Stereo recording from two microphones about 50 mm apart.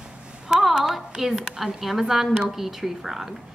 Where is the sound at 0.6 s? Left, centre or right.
Centre.